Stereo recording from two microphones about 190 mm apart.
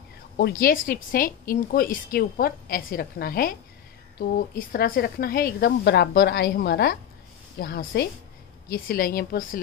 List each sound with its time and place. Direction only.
0.4 s a woman's voice: 50° left (ahead or behind)